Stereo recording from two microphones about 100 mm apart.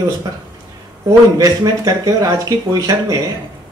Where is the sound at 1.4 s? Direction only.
40° right (ahead or behind).